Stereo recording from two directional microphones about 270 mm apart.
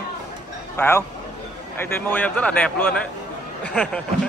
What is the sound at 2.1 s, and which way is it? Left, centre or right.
Speech, centre.